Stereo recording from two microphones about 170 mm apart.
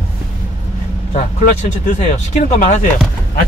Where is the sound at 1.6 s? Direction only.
45° left (ahead or behind).